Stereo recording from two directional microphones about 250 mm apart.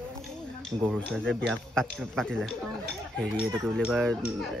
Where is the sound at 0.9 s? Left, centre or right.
Centre.